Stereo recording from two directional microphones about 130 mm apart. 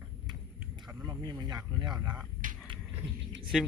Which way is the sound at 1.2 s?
30° right (ahead or behind).